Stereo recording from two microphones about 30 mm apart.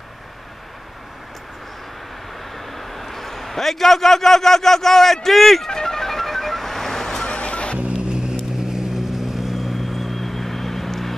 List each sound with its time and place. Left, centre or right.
2.5 s a man's voice: centre
5.7 s vehicle: centre
7.2 s music: left
7.9 s vehicle: right; by 9.8 s centre
9.8 s vehicle: centre